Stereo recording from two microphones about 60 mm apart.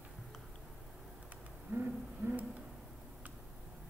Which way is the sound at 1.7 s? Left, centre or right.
Right.